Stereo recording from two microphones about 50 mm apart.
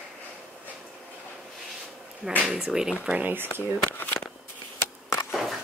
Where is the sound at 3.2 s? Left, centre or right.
Right.